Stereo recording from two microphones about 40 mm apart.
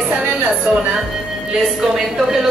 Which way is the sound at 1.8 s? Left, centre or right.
Centre.